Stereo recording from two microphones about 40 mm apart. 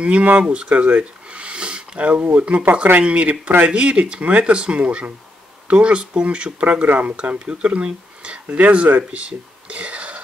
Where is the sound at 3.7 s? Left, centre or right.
Right.